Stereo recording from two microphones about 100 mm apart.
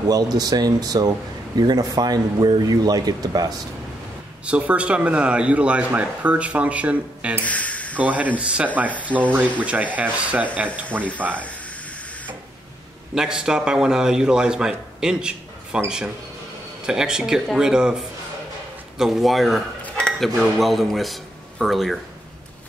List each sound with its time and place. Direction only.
0.4 s speech: 40° right (ahead or behind)
4.5 s speech: 15° right (ahead or behind)
7.4 s a sound: 15° left (ahead or behind)
8.0 s speech: 15° right (ahead or behind)
13.1 s speech: 5° right (ahead or behind)
16.8 s speech: 5° right (ahead or behind)